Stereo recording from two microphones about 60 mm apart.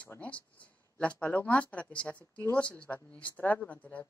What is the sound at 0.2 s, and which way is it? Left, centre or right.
Speech, left.